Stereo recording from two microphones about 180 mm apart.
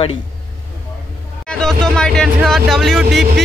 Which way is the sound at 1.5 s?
5° left (ahead or behind).